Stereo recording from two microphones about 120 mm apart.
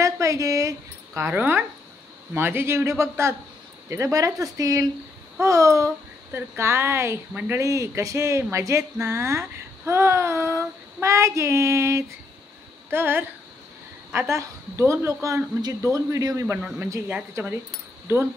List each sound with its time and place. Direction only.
0.0 s a sound: 25° right (ahead or behind)
2.3 s speech: 20° right (ahead or behind)
16.4 s speech: 10° right (ahead or behind)